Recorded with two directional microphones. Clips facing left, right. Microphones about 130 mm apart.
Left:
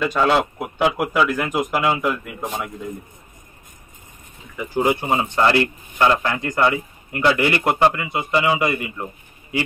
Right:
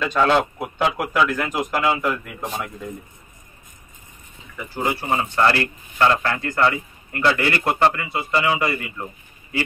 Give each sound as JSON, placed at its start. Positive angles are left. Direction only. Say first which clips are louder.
{"t": 0.0, "sound": "a man's voice", "louder": "even", "side_deg": 10}
{"t": 4.6, "sound": "a man's voice", "louder": "left 5 dB", "side_deg": 15}